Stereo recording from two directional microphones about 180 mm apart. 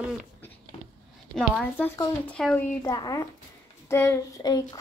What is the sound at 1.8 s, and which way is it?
Speech, 10° left (ahead or behind).